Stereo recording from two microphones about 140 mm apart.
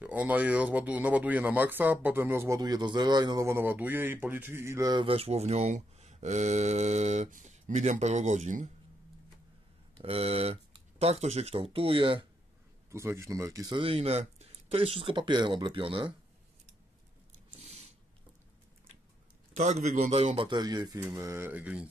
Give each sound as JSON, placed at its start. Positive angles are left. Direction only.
{"t": 0.0, "sound": "speech", "side_deg": -10}
{"t": 5.0, "sound": "speech", "side_deg": -45}
{"t": 9.9, "sound": "speech", "side_deg": -40}
{"t": 12.9, "sound": "speech", "side_deg": -20}
{"t": 13.7, "sound": "speech", "side_deg": -45}
{"t": 17.6, "sound": "a sound", "side_deg": -50}
{"t": 19.5, "sound": "speech", "side_deg": -60}